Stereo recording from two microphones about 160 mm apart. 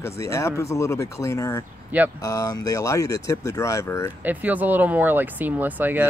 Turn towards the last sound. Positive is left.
turn(degrees=-10)  # may be behind; listen again after turning